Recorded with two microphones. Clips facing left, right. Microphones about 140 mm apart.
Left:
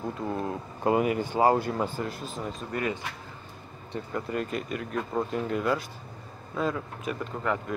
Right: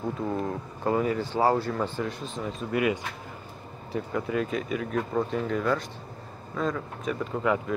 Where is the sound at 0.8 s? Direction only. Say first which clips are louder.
Left 1 dB; 15° left (ahead or behind).